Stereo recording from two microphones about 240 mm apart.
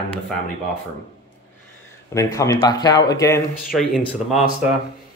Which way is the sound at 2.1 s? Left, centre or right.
Centre.